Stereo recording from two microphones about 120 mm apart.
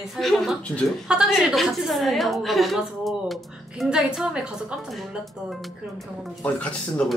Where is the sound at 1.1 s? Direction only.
5° right (ahead or behind).